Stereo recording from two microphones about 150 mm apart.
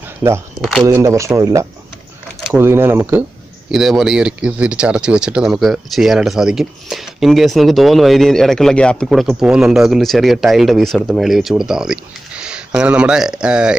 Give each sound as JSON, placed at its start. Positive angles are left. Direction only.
{"t": 0.6, "sound": "speech", "side_deg": 0}
{"t": 0.8, "sound": "speech", "side_deg": -20}
{"t": 3.7, "sound": "speech", "side_deg": 0}